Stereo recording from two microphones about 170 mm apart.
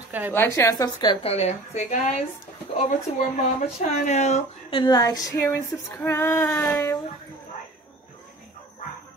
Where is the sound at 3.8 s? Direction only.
40° left (ahead or behind).